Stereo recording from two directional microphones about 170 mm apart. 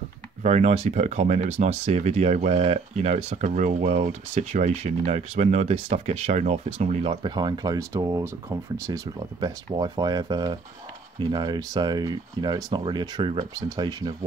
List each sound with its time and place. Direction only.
0.4 s speech: 45° right (ahead or behind)
7.2 s speech: 25° right (ahead or behind)